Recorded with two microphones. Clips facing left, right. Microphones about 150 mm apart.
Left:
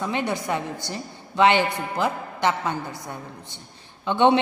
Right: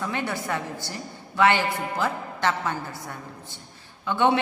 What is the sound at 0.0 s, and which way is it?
A woman's voice, 20° left (ahead or behind).